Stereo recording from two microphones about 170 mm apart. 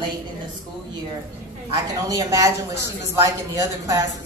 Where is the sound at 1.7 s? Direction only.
20° right (ahead or behind).